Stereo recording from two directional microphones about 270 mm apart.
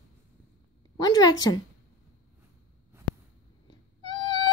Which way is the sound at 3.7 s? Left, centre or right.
Centre.